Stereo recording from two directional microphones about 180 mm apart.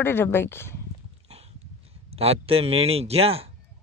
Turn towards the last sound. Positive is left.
turn(degrees=-35)  # may be behind; listen again after turning